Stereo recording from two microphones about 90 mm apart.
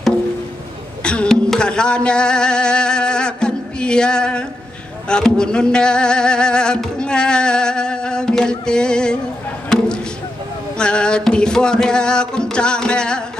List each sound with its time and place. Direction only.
1.0 s a sound: 10° left (ahead or behind)
5.0 s speech: 10° left (ahead or behind)
10.8 s speech: 10° left (ahead or behind)